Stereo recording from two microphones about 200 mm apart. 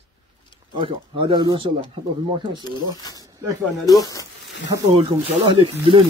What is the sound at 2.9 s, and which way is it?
Speech, 20° left (ahead or behind).